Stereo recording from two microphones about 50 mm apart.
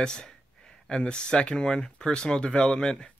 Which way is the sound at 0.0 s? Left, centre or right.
Centre.